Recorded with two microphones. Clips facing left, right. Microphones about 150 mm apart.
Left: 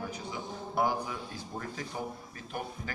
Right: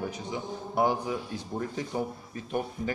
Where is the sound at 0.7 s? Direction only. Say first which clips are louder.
Right 4 dB; 20° right (ahead or behind).